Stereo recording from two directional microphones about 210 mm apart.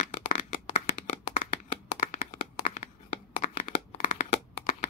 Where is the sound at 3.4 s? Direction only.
35° left (ahead or behind).